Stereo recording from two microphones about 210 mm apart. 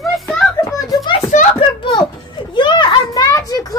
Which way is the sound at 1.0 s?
35° left (ahead or behind).